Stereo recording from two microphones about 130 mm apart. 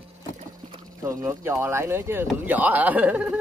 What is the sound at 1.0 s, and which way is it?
Speech, 20° right (ahead or behind).